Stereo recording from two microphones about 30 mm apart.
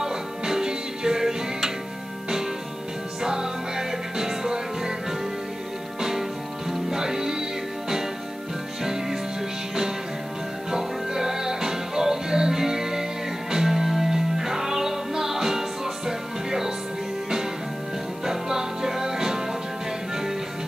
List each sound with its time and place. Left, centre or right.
0.0 s music: centre
3.2 s music: right
5.9 s music: centre
10.7 s music: centre
18.2 s music: centre